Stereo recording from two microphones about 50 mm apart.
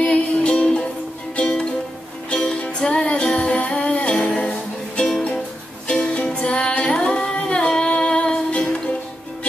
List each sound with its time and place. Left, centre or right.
0.0 s music: left
7.4 s female singing: centre